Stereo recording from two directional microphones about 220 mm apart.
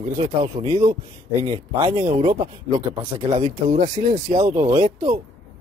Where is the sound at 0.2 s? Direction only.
25° right (ahead or behind).